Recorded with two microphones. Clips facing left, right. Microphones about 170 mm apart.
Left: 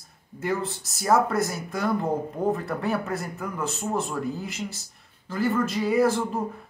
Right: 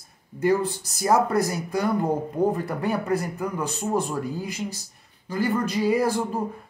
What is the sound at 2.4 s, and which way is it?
A man's voice, 15° right (ahead or behind).